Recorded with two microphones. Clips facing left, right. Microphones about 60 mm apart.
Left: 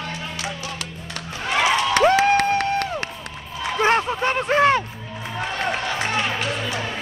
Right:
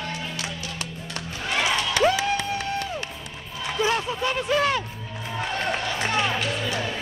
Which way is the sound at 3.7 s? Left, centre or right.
Left.